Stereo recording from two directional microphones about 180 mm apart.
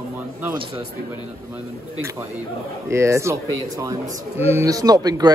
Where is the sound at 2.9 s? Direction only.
15° right (ahead or behind).